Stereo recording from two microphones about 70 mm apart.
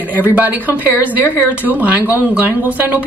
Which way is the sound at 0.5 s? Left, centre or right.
Right.